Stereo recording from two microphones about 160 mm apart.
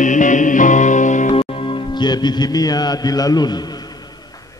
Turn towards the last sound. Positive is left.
turn(degrees=25)  # may be behind; listen again after turning